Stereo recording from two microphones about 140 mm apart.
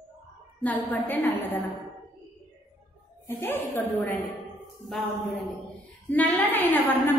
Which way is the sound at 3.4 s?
15° left (ahead or behind).